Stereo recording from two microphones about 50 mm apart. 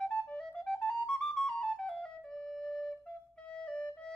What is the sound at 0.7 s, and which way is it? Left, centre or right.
Flute, centre.